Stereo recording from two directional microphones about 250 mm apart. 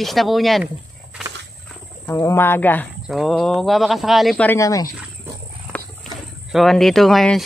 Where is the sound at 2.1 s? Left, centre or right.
Centre.